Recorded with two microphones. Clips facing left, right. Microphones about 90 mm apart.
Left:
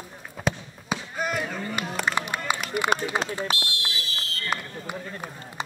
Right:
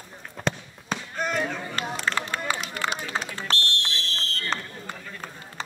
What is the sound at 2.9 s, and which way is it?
Run, 55° left (ahead or behind).